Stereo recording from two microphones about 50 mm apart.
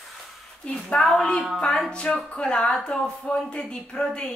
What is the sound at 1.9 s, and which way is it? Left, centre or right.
Speech, left.